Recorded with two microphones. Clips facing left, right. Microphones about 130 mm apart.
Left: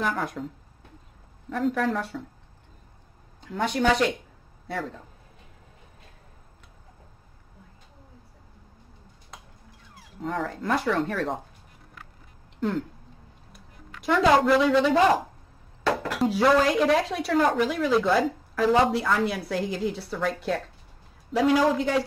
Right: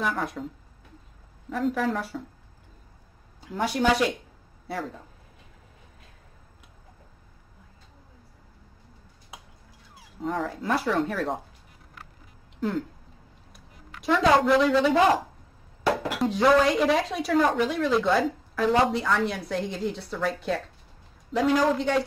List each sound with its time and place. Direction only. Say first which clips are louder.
0.0 s a woman's voice: left 1 dB; centre (ahead or behind)
1.5 s a woman's voice: left 1 dB; centre (ahead or behind)
3.3 s a woman's voice: even; 5° right (ahead or behind)
10.2 s a woman's voice: even; centre (ahead or behind)
12.5 s a woman's voice: left 1 dB; centre (ahead or behind)
16.2 s a woman's voice: even; centre (ahead or behind)